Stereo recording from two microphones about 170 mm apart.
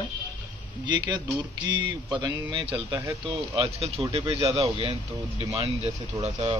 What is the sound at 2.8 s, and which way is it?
Speech, 20° right (ahead or behind).